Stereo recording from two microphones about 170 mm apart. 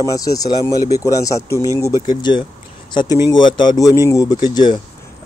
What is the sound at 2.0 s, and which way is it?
Speech, 25° left (ahead or behind).